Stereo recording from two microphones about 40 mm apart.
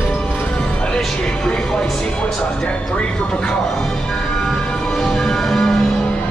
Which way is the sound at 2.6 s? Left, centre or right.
Left.